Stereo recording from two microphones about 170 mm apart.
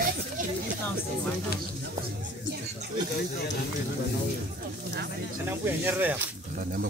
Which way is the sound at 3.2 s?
80° left.